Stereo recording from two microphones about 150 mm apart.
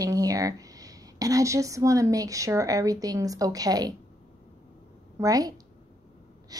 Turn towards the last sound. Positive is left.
turn(degrees=-25)  # may be behind; listen again after turning